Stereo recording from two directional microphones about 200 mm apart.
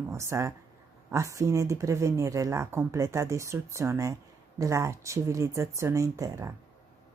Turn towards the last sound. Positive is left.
turn(degrees=-15)  # may be behind; listen again after turning